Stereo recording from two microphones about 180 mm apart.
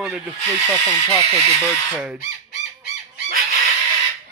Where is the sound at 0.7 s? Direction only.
10° right (ahead or behind).